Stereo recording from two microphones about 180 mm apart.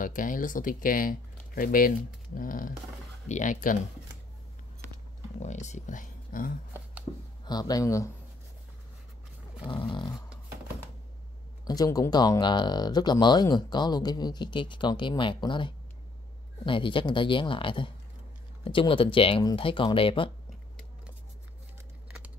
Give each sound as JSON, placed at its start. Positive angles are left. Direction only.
{"t": 0.0, "sound": "speech", "side_deg": 50}
{"t": 5.4, "sound": "speech", "side_deg": 40}
{"t": 7.4, "sound": "speech", "side_deg": 20}
{"t": 9.7, "sound": "speech", "side_deg": 25}
{"t": 11.6, "sound": "speech", "side_deg": 20}